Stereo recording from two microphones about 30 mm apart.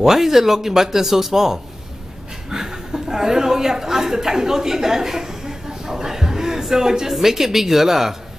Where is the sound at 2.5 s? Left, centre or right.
Centre.